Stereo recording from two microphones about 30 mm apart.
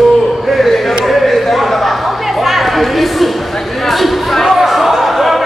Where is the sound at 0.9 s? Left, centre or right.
Centre.